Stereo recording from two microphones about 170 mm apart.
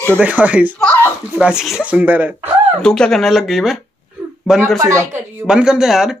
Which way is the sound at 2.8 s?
5° left (ahead or behind).